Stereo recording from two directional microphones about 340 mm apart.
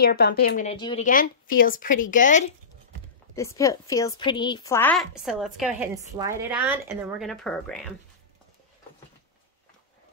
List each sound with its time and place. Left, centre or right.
0.0 s speech: left
3.3 s a woman's voice: centre